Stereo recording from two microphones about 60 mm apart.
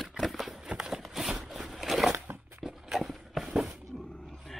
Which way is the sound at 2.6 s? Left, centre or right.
Centre.